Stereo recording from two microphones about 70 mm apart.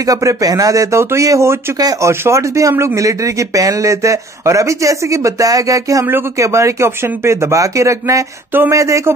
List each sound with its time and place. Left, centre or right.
0.0 s a man's voice: right